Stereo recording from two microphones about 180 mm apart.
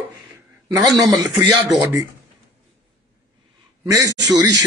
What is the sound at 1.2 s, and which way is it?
Speech, 20° right (ahead or behind).